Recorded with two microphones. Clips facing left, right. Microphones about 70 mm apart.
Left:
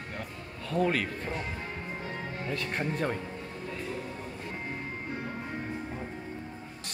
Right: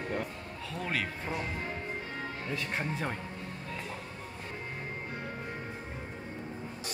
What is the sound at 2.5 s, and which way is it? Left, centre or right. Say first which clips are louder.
Speech: left 3 dB; centre.